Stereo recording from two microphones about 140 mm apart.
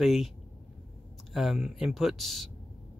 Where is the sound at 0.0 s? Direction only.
Centre (ahead or behind).